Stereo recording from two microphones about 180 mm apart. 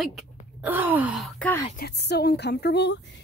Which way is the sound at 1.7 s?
65° left (ahead or behind).